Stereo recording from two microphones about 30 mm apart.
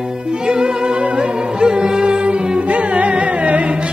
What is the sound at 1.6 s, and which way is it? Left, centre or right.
Music, right.